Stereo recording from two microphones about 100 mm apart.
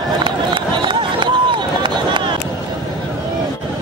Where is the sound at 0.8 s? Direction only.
55° right (ahead or behind).